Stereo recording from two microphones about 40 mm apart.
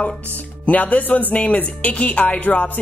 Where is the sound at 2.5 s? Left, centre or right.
Left.